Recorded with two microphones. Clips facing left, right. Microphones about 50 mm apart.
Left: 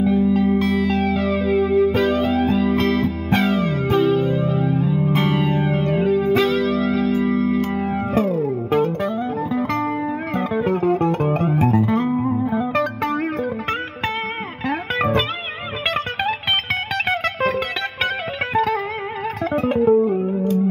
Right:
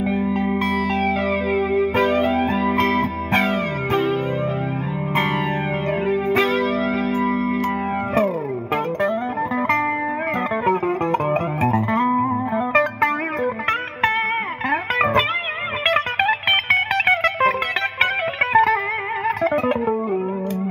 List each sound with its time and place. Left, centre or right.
0.0 s music: right
9.6 s music: right
12.1 s music: right
12.5 s music: right
19.9 s music: centre